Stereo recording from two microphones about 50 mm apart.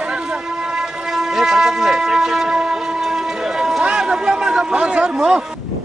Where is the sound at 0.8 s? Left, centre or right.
Centre.